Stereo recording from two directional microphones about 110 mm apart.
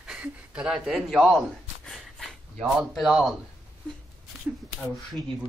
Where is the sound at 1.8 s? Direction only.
Centre (ahead or behind).